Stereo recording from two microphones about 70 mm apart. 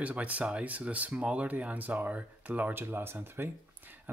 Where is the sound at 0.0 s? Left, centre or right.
Right.